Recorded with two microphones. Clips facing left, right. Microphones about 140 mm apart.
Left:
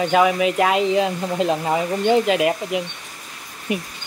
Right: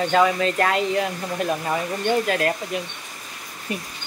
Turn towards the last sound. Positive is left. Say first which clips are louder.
# left 5 dB
turn(degrees=15)  # may be behind; listen again after turning